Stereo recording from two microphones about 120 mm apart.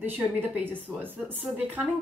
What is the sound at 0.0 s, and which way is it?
A woman's voice, 15° right (ahead or behind).